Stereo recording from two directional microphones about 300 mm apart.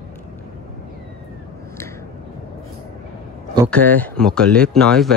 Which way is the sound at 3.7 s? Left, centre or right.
Centre.